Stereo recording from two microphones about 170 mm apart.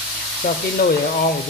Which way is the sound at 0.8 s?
70° left (ahead or behind).